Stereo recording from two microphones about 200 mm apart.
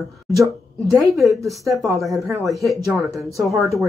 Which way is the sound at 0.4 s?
Centre (ahead or behind).